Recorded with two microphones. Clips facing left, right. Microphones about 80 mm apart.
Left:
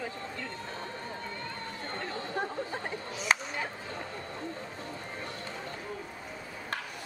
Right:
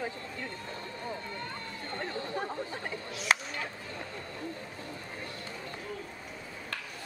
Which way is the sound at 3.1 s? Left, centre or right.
Centre.